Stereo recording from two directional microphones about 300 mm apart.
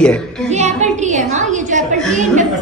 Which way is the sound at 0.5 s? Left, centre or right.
Right.